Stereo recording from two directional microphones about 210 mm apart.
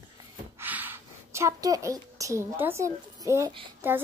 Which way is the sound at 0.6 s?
10° right (ahead or behind).